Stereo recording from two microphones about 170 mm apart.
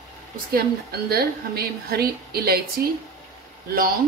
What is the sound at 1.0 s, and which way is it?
A woman's voice, 65° right (ahead or behind).